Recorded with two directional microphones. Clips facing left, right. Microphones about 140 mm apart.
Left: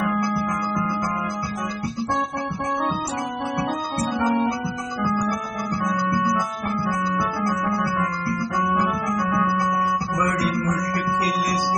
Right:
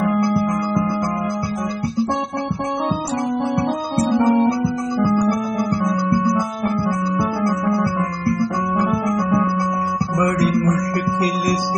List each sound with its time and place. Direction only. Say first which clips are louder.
0.0 s music: right 5 dB; 35° right (ahead or behind)
3.9 s music: right 7 dB; 25° right (ahead or behind)
8.8 s music: right 4 dB; 20° right (ahead or behind)